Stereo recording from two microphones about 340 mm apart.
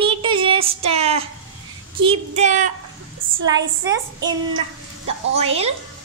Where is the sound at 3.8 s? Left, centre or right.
Centre.